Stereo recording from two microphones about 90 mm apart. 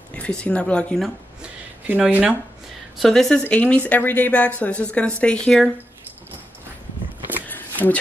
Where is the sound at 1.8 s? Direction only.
15° right (ahead or behind).